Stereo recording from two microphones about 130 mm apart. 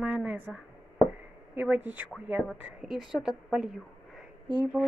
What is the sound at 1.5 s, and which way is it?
A woman's voice, 10° right (ahead or behind).